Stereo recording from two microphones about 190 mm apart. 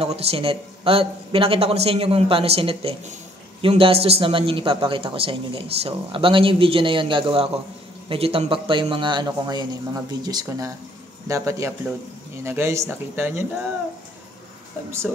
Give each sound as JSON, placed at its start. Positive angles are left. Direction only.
{"t": 0.0, "sound": "a man's voice", "side_deg": -30}